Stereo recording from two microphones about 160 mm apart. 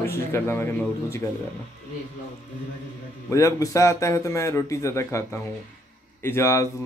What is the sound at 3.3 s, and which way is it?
A man's voice, 20° left (ahead or behind).